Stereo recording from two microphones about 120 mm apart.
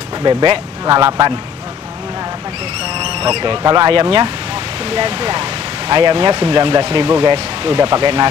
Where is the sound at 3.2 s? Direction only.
55° right (ahead or behind).